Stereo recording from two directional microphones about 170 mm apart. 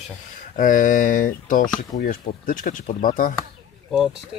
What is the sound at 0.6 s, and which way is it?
Speech, 50° left (ahead or behind).